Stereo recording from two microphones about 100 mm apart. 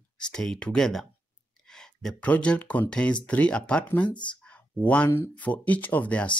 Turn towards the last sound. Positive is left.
turn(degrees=15)  # may be behind; listen again after turning